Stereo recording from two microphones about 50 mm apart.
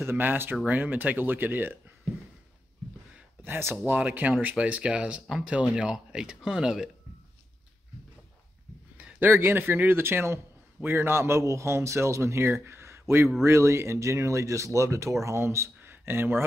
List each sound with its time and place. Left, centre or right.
0.0 s speech: right
3.4 s speech: right
4.0 s speech: right; by 6.9 s centre
9.2 s a man's voice: right
13.4 s speech: right
15.2 s speech: right
15.8 s a sound: right